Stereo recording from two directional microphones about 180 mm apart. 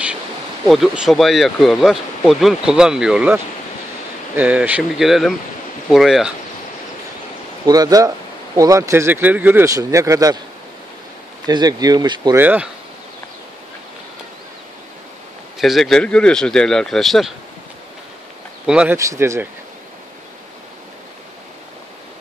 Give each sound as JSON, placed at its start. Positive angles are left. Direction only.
{"t": 0.7, "sound": "speech", "side_deg": 0}
{"t": 4.4, "sound": "speech", "side_deg": -10}
{"t": 7.6, "sound": "speech", "side_deg": -20}
{"t": 11.4, "sound": "speech", "side_deg": -20}
{"t": 15.6, "sound": "speech", "side_deg": 0}
{"t": 18.7, "sound": "speech", "side_deg": -5}
{"t": 18.9, "sound": "speech", "side_deg": -15}